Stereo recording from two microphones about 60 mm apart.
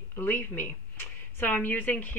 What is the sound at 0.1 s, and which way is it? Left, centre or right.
A woman's voice, left.